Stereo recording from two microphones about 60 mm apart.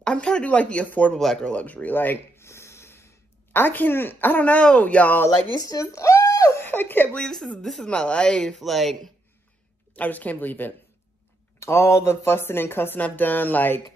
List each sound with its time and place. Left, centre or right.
0.0 s speech: centre
1.1 s speech: centre
1.5 s speech: left
2.3 s a sound: left
3.5 s speech: left
5.6 s a sound: left
6.6 s a sound: left
7.2 s speech: centre
8.5 s speech: centre
9.9 s speech: left
11.6 s speech: left